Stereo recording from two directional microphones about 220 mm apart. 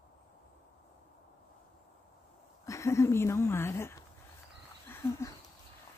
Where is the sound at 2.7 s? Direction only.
15° left (ahead or behind).